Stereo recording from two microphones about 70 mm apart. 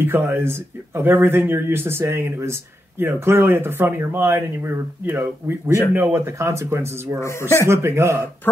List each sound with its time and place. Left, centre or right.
0.0 s speech: right
7.2 s speech: left
7.6 s speech: right